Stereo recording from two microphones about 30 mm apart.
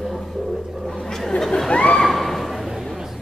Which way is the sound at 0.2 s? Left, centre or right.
Centre.